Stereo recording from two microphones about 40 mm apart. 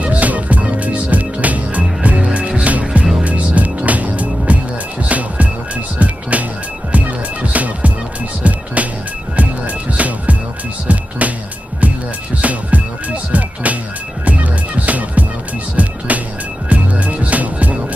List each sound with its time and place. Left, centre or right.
0.0 s music: right
9.9 s music: right
12.4 s music: right